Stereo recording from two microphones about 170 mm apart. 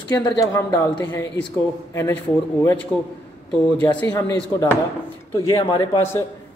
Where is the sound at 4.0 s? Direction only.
15° left (ahead or behind).